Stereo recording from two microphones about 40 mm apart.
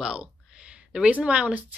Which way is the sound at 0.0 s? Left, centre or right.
Centre.